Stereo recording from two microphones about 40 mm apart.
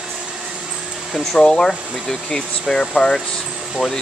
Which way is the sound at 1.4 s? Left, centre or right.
Centre.